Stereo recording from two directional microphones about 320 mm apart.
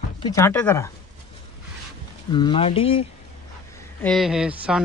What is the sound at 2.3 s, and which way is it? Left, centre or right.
Speech, centre.